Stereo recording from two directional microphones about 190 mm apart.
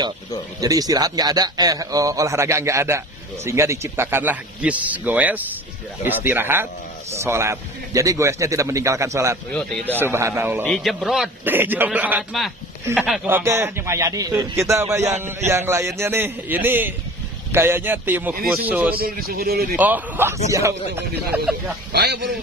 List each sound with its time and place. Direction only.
0.6 s a man's voice: 20° right (ahead or behind)
10.6 s a man's voice: centre (ahead or behind)
18.9 s a man's voice: 50° right (ahead or behind)
19.8 s a man's voice: 10° right (ahead or behind)
21.9 s a man's voice: 60° right (ahead or behind)